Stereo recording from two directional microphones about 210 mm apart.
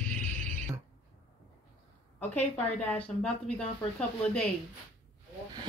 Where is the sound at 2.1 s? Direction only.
5° left (ahead or behind).